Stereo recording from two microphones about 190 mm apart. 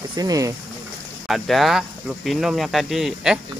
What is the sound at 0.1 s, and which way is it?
Speech, 20° right (ahead or behind).